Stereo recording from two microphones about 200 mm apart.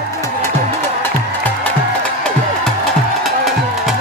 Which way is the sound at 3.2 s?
Centre (ahead or behind).